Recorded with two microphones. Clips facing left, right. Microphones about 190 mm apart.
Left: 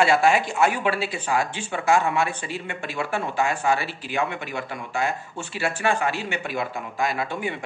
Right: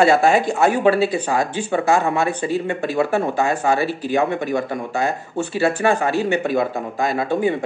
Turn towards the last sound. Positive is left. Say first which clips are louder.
# right 9 dB
turn(degrees=-40)  # may be behind; listen again after turning